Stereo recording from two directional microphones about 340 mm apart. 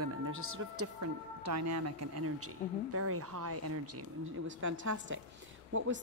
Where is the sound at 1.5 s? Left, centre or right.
Right.